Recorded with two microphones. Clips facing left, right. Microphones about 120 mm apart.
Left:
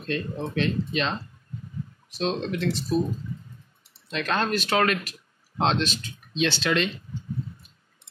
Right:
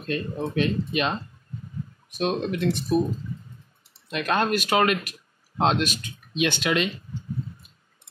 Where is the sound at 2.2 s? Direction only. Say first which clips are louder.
Right 2 dB; 15° right (ahead or behind).